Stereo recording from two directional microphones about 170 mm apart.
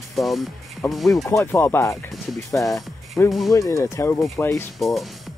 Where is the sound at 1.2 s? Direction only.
15° left (ahead or behind).